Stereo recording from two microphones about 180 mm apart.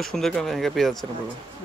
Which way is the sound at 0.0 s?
Centre (ahead or behind).